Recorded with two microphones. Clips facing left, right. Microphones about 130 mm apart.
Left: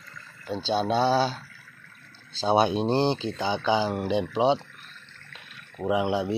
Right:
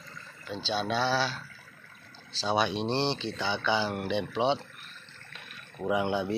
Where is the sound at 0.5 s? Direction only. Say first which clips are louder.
Left 6 dB; 30° left (ahead or behind).